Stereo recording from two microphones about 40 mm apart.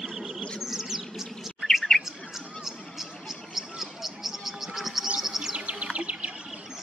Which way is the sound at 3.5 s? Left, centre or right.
Centre.